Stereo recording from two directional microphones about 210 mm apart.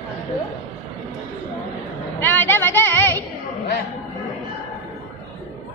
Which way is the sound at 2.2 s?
10° left (ahead or behind).